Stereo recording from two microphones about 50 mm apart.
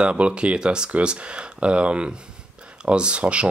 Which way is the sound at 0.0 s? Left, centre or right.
Right.